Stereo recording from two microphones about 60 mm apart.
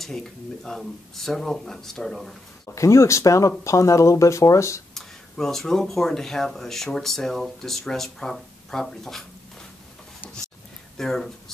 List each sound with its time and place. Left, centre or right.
0.0 s speech: centre
2.7 s speech: left
4.9 s speech: centre
11.0 s speech: centre